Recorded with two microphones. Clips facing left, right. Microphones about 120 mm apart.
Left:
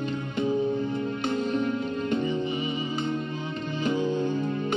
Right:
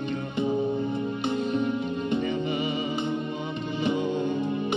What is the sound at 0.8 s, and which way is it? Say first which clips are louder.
Music: even; 5° right (ahead or behind).